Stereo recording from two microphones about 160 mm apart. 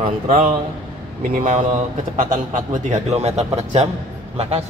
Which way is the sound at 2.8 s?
45° right (ahead or behind).